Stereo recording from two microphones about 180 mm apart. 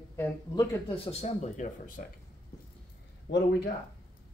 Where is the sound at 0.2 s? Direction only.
15° left (ahead or behind).